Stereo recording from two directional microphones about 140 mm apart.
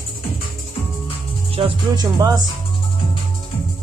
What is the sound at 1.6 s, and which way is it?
Music, 40° right (ahead or behind).